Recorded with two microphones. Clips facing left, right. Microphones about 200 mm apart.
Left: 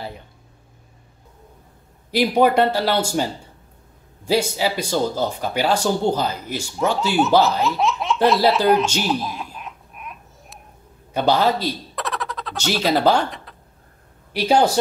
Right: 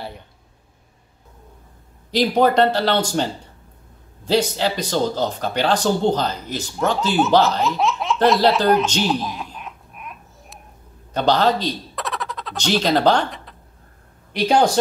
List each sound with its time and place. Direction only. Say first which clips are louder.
2.0 s speech: even; 10° left (ahead or behind)
4.3 s speech: right 1 dB; 10° left (ahead or behind)
7.4 s baby laughter: even; centre (ahead or behind)
11.1 s speech: right 1 dB; 10° left (ahead or behind)